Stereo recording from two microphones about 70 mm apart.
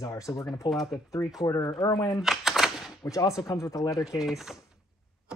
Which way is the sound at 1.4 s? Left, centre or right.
Left.